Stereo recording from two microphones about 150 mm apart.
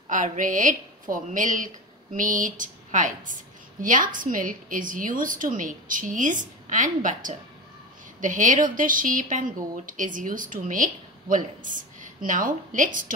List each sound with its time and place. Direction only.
0.1 s a woman's voice: 60° right (ahead or behind)